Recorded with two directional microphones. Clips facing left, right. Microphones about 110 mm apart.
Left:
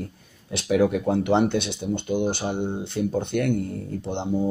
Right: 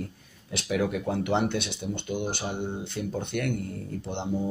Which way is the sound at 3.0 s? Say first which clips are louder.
Left 7 dB; 35° left (ahead or behind).